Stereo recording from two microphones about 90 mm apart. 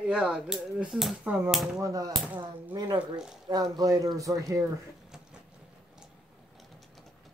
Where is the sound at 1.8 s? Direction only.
40° right (ahead or behind).